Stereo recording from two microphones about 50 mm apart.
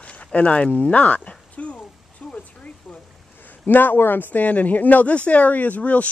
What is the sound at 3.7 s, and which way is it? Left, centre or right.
Speech, left.